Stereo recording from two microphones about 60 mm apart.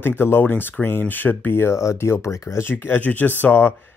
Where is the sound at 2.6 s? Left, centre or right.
Left.